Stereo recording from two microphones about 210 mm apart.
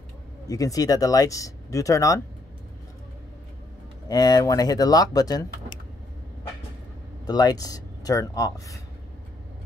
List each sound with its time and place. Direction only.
0.5 s speech: 15° left (ahead or behind)
4.1 s speech: 20° left (ahead or behind)
7.2 s speech: 20° left (ahead or behind)